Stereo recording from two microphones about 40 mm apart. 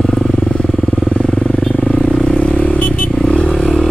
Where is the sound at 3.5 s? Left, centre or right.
Centre.